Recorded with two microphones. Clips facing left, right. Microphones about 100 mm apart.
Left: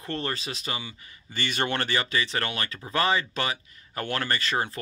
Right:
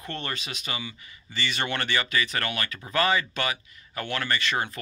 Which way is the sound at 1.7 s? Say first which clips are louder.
Even; 30° left (ahead or behind).